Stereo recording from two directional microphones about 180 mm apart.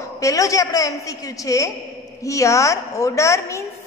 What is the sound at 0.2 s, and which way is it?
A woman's voice, 20° left (ahead or behind).